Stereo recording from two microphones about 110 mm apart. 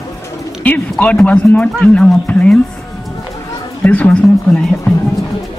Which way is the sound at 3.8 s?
10° left (ahead or behind).